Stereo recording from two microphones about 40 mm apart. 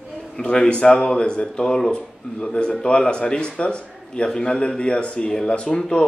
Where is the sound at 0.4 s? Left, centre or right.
Left.